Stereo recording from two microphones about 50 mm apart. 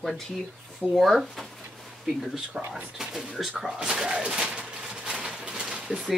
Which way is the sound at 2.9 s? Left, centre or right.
Centre.